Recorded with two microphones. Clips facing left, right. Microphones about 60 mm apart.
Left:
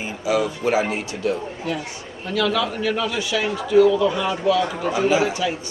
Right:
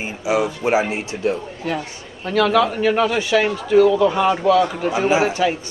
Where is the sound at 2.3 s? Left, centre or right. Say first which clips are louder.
Right 5 dB; right.